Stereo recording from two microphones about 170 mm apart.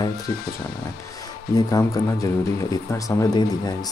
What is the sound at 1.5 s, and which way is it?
Speech, 20° left (ahead or behind).